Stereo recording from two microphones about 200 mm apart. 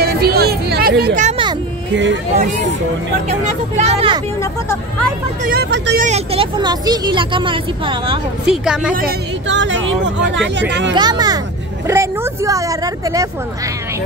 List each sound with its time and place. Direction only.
0.0 s a sound: 50° right (ahead or behind)
3.3 s speech: 35° right (ahead or behind)
5.4 s speech: 50° right (ahead or behind)
5.9 s speech: 35° right (ahead or behind)
8.5 s a woman's voice: 5° right (ahead or behind)
9.5 s speech: 65° right (ahead or behind)
11.0 s speech: 20° right (ahead or behind)